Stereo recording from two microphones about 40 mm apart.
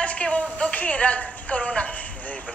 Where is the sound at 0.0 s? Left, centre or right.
Left.